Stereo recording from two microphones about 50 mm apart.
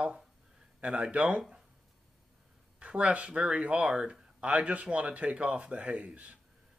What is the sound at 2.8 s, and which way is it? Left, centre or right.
Speech, right.